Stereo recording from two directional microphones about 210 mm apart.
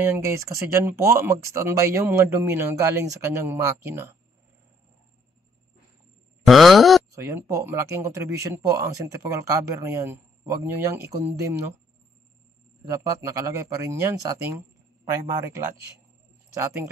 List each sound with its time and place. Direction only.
0.0 s speech: 10° right (ahead or behind)
6.4 s groan: centre (ahead or behind)
7.2 s speech: 10° right (ahead or behind)
12.9 s speech: 15° right (ahead or behind)